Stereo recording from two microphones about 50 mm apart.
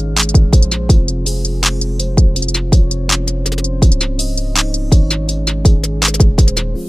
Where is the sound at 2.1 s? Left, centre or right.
Centre.